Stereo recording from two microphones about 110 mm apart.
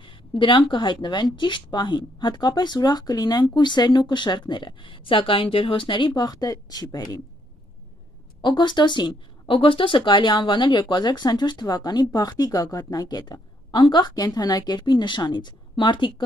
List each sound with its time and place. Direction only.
0.0 s speech: 50° left (ahead or behind)
8.4 s speech: 45° left (ahead or behind)